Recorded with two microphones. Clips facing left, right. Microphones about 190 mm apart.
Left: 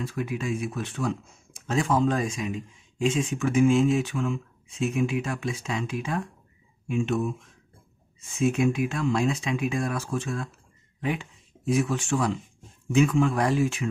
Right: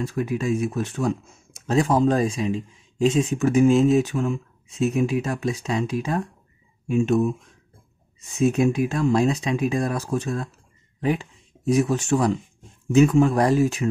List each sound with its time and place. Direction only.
0.0 s speech: 40° right (ahead or behind)
8.2 s speech: 40° right (ahead or behind)